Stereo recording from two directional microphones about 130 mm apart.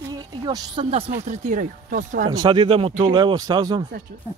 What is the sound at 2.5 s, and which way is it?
Speech, 40° right (ahead or behind).